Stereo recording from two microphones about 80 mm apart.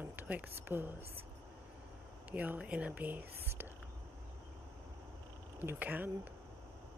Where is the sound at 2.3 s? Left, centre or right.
Centre.